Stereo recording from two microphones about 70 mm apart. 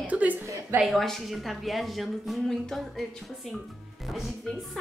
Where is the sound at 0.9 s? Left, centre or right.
Centre.